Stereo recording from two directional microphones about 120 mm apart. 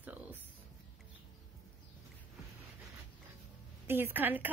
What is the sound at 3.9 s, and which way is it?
Speech, 15° right (ahead or behind).